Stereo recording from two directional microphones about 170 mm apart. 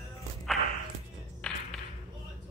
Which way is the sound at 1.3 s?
5° left (ahead or behind).